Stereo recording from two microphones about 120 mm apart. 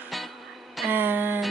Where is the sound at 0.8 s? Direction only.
15° right (ahead or behind).